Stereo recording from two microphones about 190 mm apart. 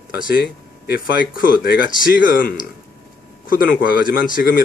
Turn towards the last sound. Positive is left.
turn(degrees=50)  # may be behind; listen again after turning